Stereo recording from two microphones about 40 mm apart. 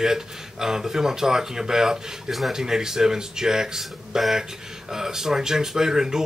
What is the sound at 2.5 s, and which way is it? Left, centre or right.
Speech, centre.